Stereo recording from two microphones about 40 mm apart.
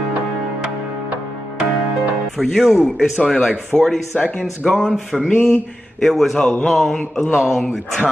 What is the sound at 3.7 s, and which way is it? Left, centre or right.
Speech, left.